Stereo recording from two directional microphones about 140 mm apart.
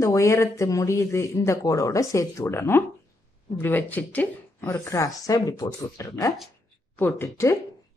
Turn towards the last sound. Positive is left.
turn(degrees=15)  # may be behind; listen again after turning